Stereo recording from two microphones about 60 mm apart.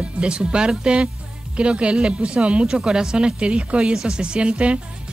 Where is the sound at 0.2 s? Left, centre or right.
Centre.